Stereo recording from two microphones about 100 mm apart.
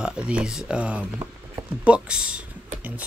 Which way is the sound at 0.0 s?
10° right (ahead or behind).